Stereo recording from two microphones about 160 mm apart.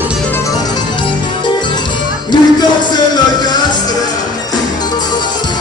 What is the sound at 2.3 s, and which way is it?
Music, 25° left (ahead or behind).